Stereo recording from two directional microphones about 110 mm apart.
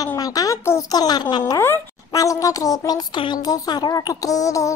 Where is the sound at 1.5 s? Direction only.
25° left (ahead or behind).